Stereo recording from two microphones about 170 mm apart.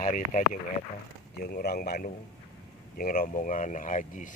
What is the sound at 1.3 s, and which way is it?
A man's voice, 65° left (ahead or behind).